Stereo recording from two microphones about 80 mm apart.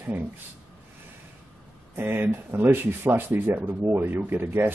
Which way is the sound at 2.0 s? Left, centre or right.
Right.